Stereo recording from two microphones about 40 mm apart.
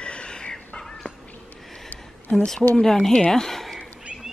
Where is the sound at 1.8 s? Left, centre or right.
Left.